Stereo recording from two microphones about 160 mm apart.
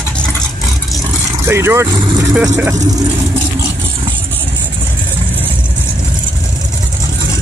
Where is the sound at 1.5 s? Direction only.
15° right (ahead or behind).